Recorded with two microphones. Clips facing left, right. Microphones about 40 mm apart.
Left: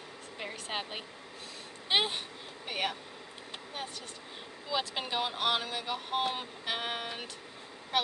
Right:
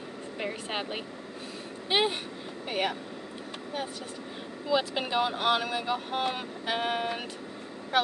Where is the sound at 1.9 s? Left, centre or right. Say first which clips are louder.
Right 3 dB; centre.